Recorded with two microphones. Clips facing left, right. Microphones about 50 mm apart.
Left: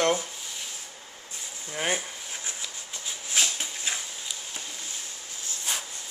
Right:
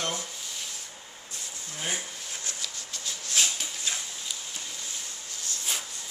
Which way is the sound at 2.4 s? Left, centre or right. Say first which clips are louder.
Even; centre.